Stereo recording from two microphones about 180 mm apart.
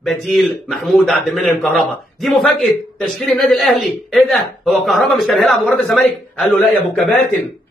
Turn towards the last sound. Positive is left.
turn(degrees=0)  # may be behind; listen again after turning